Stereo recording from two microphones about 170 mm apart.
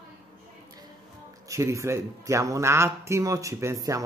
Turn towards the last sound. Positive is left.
turn(degrees=-20)  # may be behind; listen again after turning